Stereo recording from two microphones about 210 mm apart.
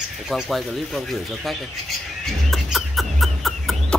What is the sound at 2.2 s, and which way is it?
Chicken, centre (ahead or behind).